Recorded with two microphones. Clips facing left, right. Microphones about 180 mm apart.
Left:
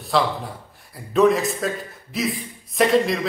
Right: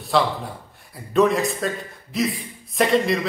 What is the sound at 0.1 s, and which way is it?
A man's voice, centre (ahead or behind).